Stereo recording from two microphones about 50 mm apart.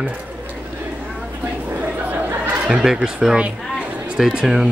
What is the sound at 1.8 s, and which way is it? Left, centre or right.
Chatter, right.